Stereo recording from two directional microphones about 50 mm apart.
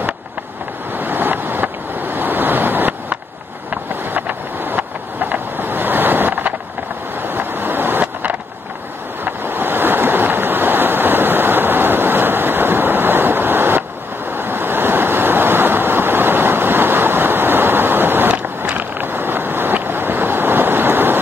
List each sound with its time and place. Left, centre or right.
0.9 s waves: right
3.9 s vehicle: right
7.2 s a sound: right
9.2 s waves: right
18.9 s vehicle: right